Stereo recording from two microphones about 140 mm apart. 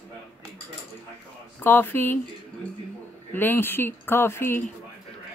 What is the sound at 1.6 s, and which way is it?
Speech, 15° left (ahead or behind).